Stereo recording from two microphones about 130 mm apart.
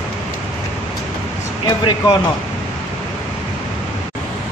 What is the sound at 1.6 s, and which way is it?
Speech, 35° left (ahead or behind).